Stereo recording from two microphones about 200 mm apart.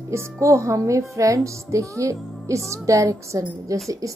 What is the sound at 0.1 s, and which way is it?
Speech, 15° right (ahead or behind).